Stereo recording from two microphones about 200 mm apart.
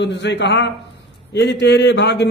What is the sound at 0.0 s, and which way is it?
A man's voice, 60° left (ahead or behind).